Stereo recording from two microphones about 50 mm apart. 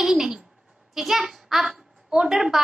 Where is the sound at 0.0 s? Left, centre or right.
Centre.